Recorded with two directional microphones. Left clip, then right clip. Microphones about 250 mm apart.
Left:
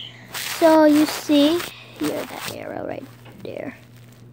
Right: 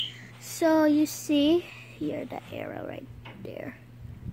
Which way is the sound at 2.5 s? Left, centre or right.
Centre.